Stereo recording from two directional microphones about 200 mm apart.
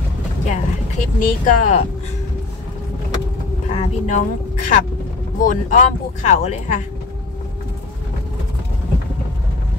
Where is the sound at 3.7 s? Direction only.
40° left (ahead or behind).